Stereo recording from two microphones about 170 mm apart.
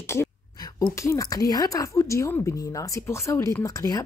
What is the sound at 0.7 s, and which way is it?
A woman's voice, 20° left (ahead or behind).